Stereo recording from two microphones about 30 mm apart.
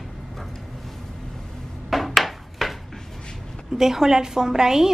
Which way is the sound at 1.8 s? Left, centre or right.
Centre.